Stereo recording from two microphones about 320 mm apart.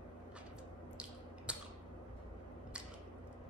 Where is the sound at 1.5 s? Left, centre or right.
Centre.